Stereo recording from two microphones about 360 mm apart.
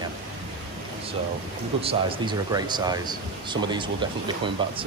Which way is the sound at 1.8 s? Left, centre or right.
Centre.